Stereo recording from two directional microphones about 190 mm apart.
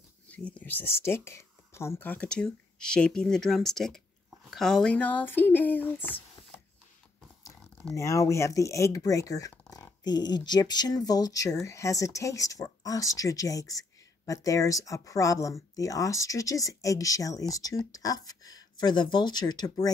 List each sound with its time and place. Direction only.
0.3 s speech: 5° left (ahead or behind)
7.4 s speech: 10° left (ahead or behind)